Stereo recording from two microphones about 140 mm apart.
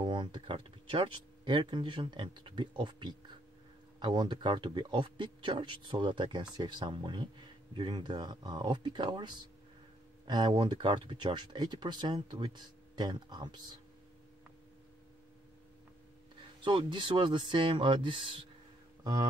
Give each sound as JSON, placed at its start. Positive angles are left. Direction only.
{"t": 0.0, "sound": "speech", "side_deg": -35}
{"t": 16.6, "sound": "speech", "side_deg": -35}